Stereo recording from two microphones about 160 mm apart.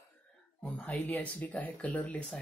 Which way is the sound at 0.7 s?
10° left (ahead or behind).